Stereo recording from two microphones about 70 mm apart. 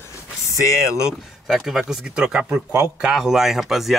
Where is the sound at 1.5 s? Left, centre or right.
Centre.